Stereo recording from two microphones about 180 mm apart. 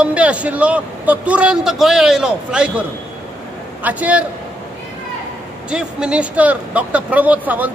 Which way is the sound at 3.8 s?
10° right (ahead or behind).